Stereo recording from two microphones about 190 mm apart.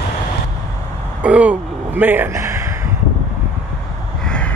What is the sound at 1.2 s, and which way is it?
Vehicle, 5° right (ahead or behind).